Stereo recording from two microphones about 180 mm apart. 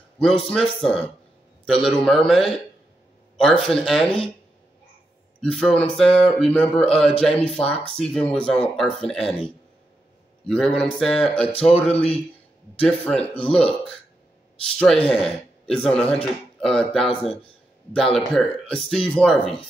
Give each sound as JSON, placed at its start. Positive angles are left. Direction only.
{"t": 0.2, "sound": "speech", "side_deg": 0}
{"t": 5.4, "sound": "speech", "side_deg": 5}
{"t": 10.5, "sound": "speech", "side_deg": 5}
{"t": 11.9, "sound": "a man's voice", "side_deg": 35}
{"t": 12.8, "sound": "speech", "side_deg": 5}
{"t": 15.0, "sound": "speech", "side_deg": 5}